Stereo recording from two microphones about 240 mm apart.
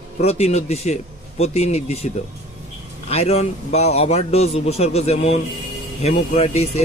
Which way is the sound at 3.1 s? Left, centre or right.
Left.